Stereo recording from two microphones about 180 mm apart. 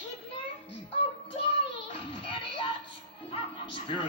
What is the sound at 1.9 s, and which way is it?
Music, 30° left (ahead or behind).